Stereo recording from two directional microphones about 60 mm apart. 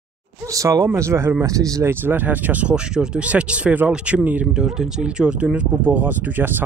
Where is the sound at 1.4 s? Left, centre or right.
Right.